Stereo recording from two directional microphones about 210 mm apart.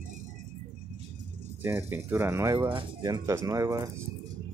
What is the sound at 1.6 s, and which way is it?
Speech, 10° right (ahead or behind).